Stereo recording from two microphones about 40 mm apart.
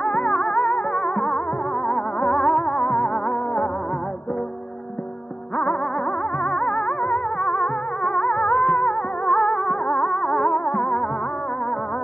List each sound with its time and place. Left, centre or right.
0.0 s music: centre
6.4 s music: centre